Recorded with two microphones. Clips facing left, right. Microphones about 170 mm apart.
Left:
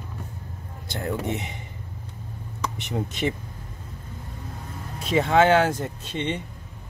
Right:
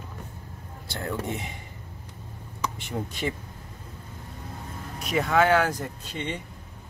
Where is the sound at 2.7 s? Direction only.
20° left (ahead or behind).